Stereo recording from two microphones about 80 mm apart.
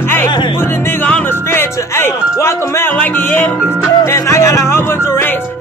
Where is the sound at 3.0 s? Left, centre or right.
Left.